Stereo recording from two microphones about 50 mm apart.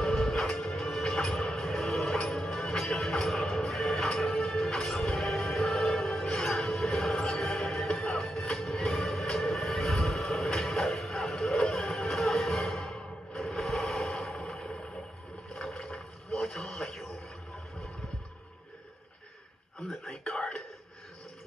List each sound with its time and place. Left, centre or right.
0.0 s music: centre
8.5 s train: centre
11.5 s music: centre
15.5 s boat: centre
15.9 s a sound: centre
20.1 s a sound: centre